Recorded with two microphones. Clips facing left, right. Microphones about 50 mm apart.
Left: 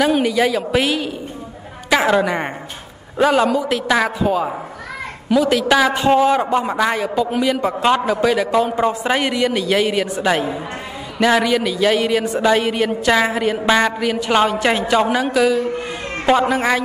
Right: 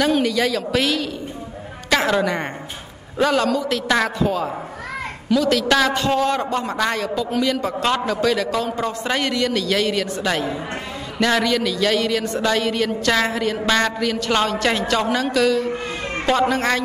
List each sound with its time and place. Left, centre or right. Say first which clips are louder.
0.0 s a man's voice: left 3 dB; centre